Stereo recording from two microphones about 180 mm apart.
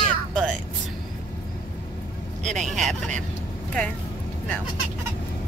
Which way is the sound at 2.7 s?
Centre (ahead or behind).